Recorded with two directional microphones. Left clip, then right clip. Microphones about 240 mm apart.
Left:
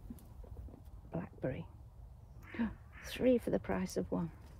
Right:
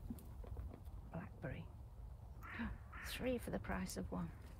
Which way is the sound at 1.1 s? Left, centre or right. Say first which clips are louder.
Left 10 dB; left.